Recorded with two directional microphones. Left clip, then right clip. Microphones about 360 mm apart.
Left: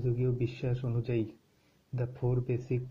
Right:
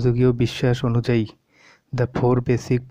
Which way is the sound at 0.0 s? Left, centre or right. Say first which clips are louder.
Right 13 dB; right.